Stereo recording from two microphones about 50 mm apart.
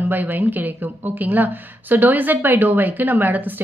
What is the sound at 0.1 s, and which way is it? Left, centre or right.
A woman's voice, right.